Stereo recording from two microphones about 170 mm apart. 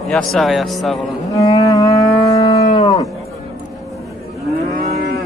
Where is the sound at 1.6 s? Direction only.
20° left (ahead or behind).